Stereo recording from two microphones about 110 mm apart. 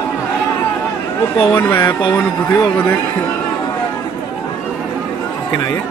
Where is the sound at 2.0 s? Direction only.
40° left (ahead or behind).